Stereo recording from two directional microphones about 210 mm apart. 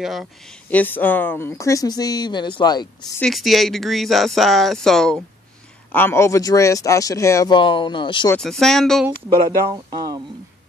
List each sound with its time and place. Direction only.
0.0 s speech: centre (ahead or behind); by 2.9 s 20° left (ahead or behind)
3.2 s speech: centre (ahead or behind); by 8.3 s 20° left (ahead or behind)
8.3 s speech: centre (ahead or behind)
9.7 s speech: 20° right (ahead or behind)